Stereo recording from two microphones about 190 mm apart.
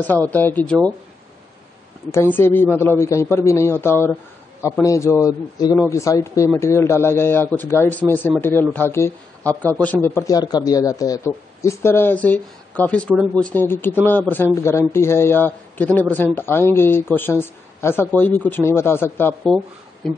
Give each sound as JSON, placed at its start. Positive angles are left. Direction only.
{"t": 0.3, "sound": "a man's voice", "side_deg": 10}
{"t": 2.3, "sound": "a man's voice", "side_deg": 10}